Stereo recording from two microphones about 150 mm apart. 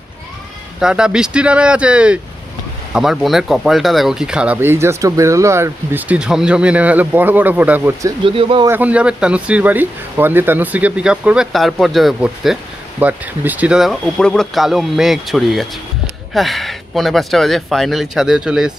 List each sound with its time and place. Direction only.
0.7 s speech: 5° right (ahead or behind)
8.2 s speech: 35° right (ahead or behind)
8.6 s speech: 10° right (ahead or behind)